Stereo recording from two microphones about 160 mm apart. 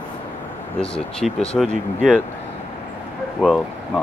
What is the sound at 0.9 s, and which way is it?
Speech, 5° left (ahead or behind).